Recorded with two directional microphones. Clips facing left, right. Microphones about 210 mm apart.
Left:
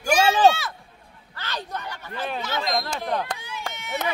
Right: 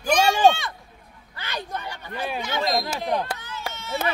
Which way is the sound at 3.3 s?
10° left (ahead or behind).